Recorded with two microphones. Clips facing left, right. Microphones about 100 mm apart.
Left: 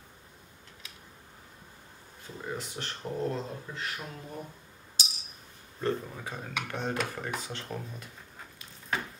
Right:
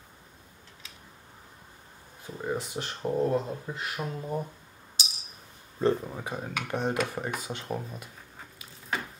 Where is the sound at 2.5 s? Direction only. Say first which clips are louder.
Right 5 dB; 10° right (ahead or behind).